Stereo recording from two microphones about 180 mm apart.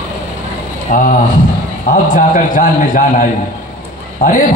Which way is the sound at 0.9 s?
45° left (ahead or behind).